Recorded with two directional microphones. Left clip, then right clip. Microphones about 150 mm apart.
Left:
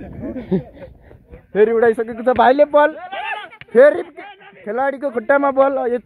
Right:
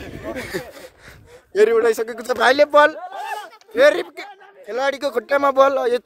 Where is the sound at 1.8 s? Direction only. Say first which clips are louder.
Left 2 dB; 20° right (ahead or behind).